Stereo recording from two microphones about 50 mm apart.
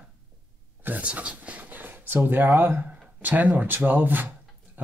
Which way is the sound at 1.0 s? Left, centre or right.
Right.